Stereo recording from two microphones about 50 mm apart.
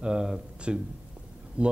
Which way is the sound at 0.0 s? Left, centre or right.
Centre.